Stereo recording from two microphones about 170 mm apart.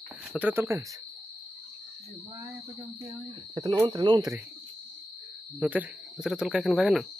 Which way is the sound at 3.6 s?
20° right (ahead or behind).